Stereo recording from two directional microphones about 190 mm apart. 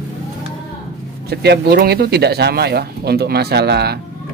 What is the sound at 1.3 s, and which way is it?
Speech, 60° right (ahead or behind).